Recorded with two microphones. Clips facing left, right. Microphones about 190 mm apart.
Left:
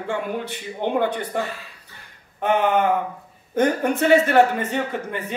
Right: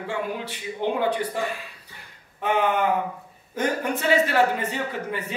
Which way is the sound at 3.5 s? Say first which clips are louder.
Left 6 dB; 55° left (ahead or behind).